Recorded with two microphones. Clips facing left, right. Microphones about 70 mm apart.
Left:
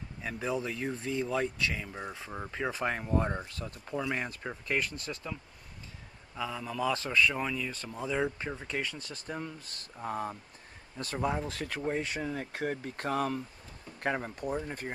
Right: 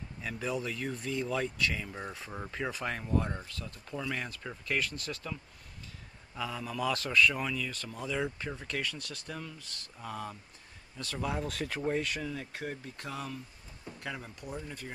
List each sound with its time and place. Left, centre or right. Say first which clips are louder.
0.2 s speech: left 2 dB; centre
2.7 s speech: left 2 dB; left
4.6 s speech: left 1 dB; centre
6.3 s speech: left 1 dB; centre
6.8 s speech: even; centre
11.5 s speech: right 1 dB; centre
12.0 s speech: left 1 dB; left